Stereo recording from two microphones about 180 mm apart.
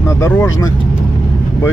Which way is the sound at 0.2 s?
15° left (ahead or behind).